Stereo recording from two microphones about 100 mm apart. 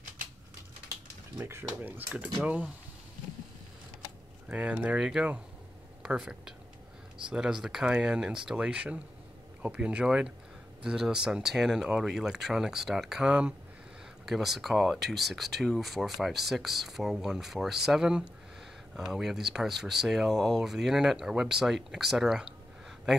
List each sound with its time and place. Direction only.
1.4 s speech: 25° right (ahead or behind)
4.5 s speech: 10° right (ahead or behind)